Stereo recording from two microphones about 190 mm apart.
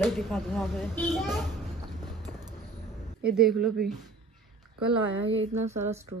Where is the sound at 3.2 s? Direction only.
Centre (ahead or behind).